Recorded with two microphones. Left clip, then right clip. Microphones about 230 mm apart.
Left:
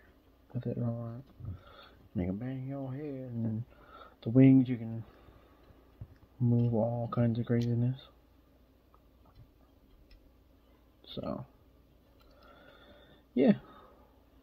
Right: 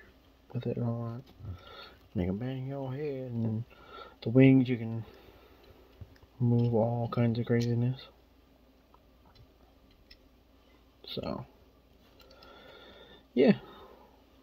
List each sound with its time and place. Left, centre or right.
0.5 s speech: right
6.5 s speech: right
11.1 s speech: right
12.4 s a sound: right